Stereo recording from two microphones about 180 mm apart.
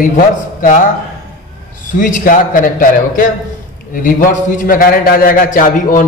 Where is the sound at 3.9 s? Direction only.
50° left (ahead or behind).